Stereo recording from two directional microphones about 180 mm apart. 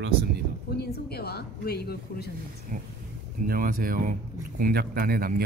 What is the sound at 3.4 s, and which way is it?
Speech, 50° right (ahead or behind).